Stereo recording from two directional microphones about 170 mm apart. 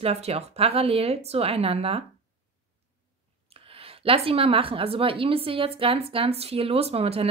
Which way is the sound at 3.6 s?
35° right (ahead or behind).